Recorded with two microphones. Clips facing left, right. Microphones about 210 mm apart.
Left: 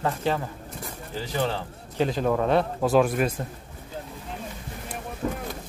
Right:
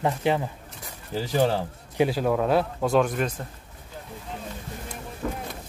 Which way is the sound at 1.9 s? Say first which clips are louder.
Right 1 dB; 5° right (ahead or behind).